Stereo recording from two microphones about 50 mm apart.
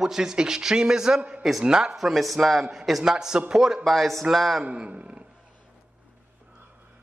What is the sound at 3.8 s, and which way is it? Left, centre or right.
Speech, centre.